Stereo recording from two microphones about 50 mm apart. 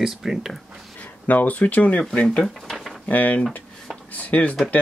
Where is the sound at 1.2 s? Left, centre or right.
Left; by 2.4 s centre.